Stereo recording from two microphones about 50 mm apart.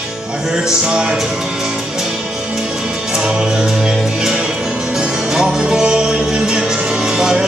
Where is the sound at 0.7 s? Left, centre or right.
Centre.